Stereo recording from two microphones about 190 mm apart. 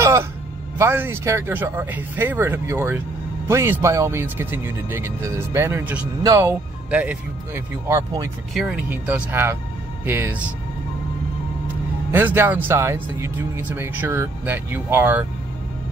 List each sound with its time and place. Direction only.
0.0 s music: 15° right (ahead or behind)
0.7 s speech: 10° right (ahead or behind)
8.5 s speech: 5° right (ahead or behind)
12.1 s speech: 10° right (ahead or behind)